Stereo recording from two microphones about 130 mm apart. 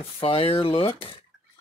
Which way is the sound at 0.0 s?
50° left (ahead or behind).